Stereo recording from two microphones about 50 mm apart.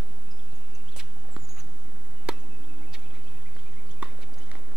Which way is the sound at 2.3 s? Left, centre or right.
Centre.